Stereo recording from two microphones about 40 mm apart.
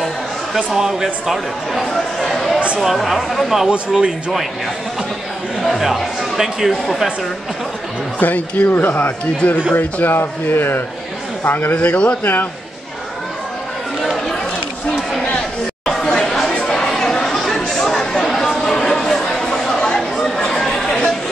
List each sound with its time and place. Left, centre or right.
0.6 s speech: centre
1.9 s speech: centre
3.6 s speech: right
5.6 s speech: centre
8.2 s speech: left
9.2 s speech: left
9.8 s speech: left
10.1 s speech: left
11.4 s speech: left
11.7 s speech: left
12.2 s speech: left
15.2 s a sound: centre
16.0 s chatter: centre
19.7 s a sound: centre